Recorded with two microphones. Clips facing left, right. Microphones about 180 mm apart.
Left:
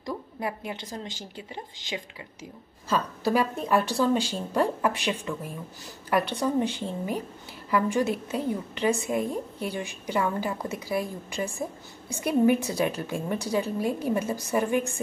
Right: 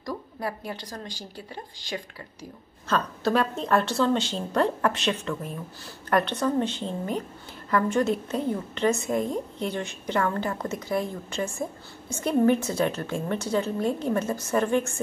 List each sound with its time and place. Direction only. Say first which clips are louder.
0.0 s a woman's voice: even; 15° left (ahead or behind)